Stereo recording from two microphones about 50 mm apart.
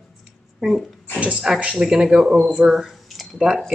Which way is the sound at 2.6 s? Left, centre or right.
Centre.